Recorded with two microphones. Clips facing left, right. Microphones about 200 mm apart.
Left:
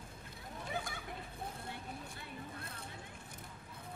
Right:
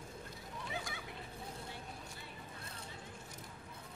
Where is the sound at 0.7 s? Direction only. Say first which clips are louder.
Left 3 dB; 50° left (ahead or behind).